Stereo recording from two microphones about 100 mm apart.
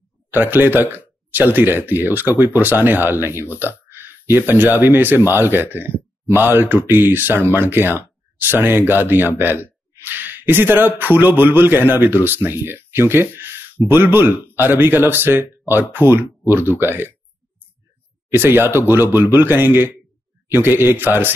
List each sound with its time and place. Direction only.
0.3 s speech: 20° right (ahead or behind)
18.3 s speech: 20° right (ahead or behind)